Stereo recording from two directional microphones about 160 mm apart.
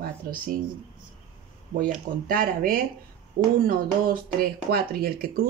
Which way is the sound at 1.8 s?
60° right (ahead or behind).